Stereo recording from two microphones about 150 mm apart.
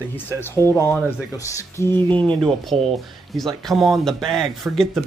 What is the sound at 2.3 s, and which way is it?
Speech, centre (ahead or behind).